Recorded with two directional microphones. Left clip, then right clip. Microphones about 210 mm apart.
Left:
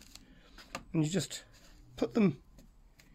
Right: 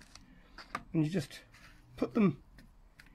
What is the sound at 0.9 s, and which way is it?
Speech, 10° left (ahead or behind).